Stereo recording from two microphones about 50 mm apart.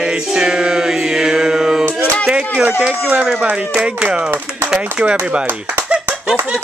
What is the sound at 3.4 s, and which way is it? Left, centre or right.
Music, right.